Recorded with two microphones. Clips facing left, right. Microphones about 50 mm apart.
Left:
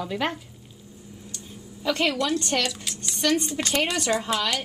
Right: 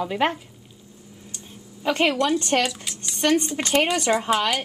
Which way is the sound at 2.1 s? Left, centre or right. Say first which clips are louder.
Right 4 dB; centre.